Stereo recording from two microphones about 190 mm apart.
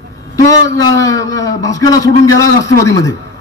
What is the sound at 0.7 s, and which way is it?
A man's voice, 15° left (ahead or behind).